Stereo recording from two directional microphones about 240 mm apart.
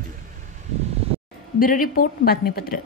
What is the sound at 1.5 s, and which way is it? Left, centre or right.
Speech, left.